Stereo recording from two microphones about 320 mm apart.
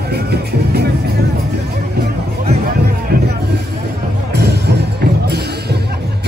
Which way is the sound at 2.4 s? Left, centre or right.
Right.